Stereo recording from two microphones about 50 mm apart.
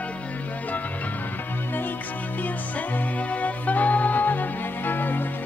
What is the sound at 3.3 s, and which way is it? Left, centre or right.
Music, left.